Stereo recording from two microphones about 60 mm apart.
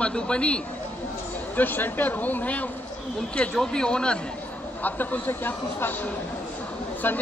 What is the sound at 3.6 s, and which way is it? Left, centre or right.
Speech, centre.